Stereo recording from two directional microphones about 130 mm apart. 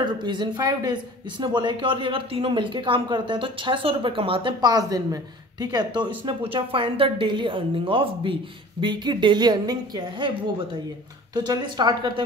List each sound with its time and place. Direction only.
0.0 s speech: 35° right (ahead or behind)
11.3 s speech: 35° right (ahead or behind)